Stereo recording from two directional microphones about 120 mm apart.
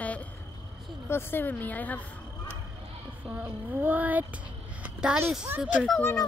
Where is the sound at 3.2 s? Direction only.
50° right (ahead or behind).